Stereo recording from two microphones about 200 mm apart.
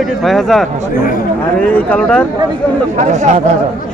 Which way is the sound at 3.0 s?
35° right (ahead or behind).